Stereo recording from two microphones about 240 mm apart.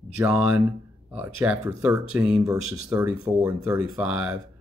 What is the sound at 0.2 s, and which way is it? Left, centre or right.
Speech, centre.